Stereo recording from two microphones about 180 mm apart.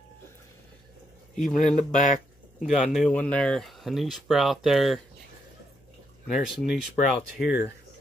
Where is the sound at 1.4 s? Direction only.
45° left (ahead or behind).